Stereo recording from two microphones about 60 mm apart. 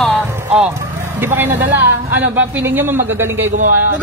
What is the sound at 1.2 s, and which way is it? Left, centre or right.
Speech, right.